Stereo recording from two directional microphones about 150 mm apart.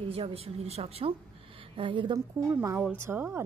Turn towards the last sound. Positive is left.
turn(degrees=-15)  # may be behind; listen again after turning